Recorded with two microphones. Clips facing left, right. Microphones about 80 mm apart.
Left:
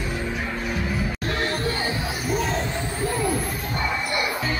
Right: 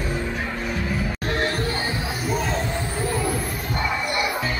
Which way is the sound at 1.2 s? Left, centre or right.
Right.